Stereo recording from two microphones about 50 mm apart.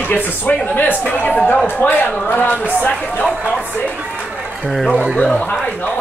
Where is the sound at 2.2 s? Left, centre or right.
Left.